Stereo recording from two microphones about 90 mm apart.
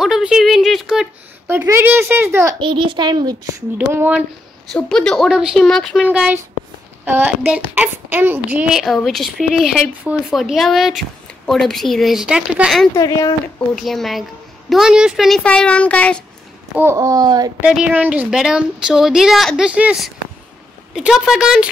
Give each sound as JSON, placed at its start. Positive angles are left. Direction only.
{"t": 0.0, "sound": "a sound", "side_deg": -5}
{"t": 1.5, "sound": "speech", "side_deg": -25}
{"t": 2.6, "sound": "a child's voice", "side_deg": -65}
{"t": 4.7, "sound": "speech", "side_deg": 5}
{"t": 5.3, "sound": "speech", "side_deg": -10}
{"t": 5.6, "sound": "speech", "side_deg": 5}
{"t": 6.0, "sound": "speech", "side_deg": -20}
{"t": 8.7, "sound": "speech", "side_deg": 0}
{"t": 12.9, "sound": "speech", "side_deg": 40}
{"t": 13.7, "sound": "speech", "side_deg": 0}
{"t": 15.4, "sound": "speech", "side_deg": 15}
{"t": 16.9, "sound": "a child's voice", "side_deg": -40}
{"t": 17.6, "sound": "speech", "side_deg": -10}